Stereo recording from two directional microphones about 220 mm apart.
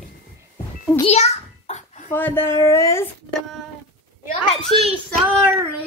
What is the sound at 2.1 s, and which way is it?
Speech, 10° left (ahead or behind).